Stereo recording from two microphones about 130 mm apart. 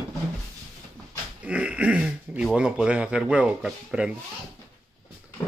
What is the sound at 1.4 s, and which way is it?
Speech, 10° right (ahead or behind).